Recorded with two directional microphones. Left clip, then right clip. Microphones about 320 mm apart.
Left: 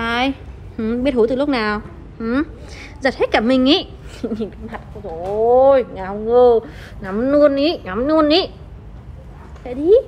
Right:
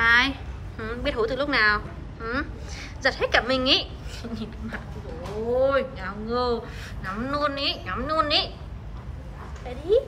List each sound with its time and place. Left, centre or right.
0.0 s a sound: centre
0.7 s speech: centre
9.7 s a woman's voice: centre